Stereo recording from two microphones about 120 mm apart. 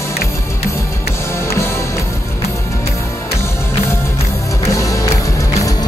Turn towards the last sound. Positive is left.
turn(degrees=25)  # may be behind; listen again after turning